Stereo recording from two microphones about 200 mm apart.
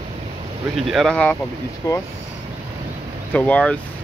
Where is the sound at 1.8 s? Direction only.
15° left (ahead or behind).